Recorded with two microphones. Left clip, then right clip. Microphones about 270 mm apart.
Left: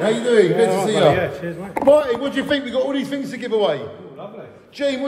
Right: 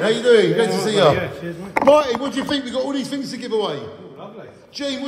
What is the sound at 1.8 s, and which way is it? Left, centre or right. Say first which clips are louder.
Speech: even; right.